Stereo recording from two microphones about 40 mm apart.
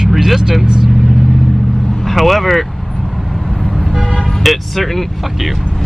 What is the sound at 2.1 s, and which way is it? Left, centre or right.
Speech, centre.